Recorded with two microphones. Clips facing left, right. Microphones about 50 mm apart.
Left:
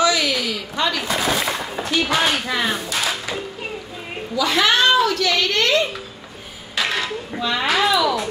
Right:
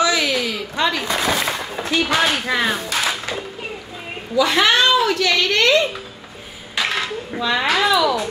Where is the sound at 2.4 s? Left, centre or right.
Right.